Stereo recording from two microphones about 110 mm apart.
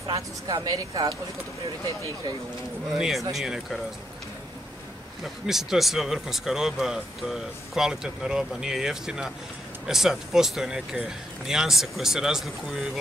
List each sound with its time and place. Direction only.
0.1 s speech: 35° right (ahead or behind)
2.9 s speech: 5° right (ahead or behind)
5.2 s speech: 5° right (ahead or behind)